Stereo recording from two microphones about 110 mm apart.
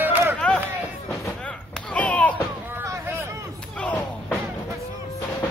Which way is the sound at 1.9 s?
10° left (ahead or behind).